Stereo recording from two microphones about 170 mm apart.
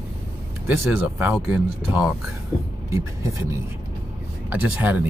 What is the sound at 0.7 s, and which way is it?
Speech, 10° right (ahead or behind).